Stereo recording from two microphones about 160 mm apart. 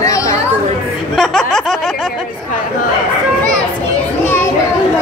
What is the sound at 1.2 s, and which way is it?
Speech, 5° left (ahead or behind).